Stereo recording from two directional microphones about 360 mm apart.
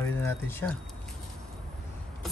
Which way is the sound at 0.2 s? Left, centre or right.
Centre.